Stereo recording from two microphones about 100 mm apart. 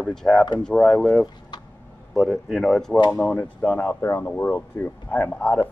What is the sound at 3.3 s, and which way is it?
Speech, 15° left (ahead or behind).